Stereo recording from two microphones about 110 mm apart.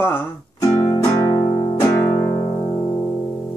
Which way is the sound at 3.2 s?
25° left (ahead or behind).